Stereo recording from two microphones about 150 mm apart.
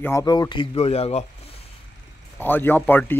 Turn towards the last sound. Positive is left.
turn(degrees=10)  # may be behind; listen again after turning